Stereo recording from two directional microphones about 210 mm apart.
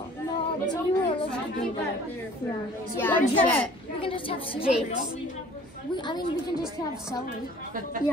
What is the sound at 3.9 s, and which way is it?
Speech, 25° left (ahead or behind).